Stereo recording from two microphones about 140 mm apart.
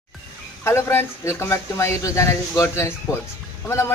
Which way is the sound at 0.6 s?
15° left (ahead or behind).